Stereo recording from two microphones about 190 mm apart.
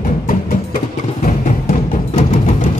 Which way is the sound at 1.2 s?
40° left (ahead or behind).